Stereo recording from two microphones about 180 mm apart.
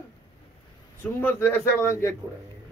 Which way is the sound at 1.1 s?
10° left (ahead or behind).